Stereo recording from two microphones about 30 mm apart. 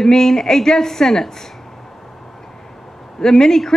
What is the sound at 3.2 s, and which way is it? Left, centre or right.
Speech, centre.